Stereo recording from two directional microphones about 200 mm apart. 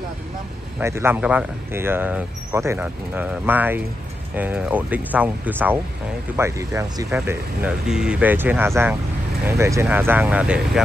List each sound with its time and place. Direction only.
0.7 s speech: 10° right (ahead or behind)